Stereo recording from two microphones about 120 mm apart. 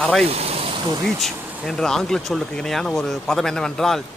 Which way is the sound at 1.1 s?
Centre (ahead or behind).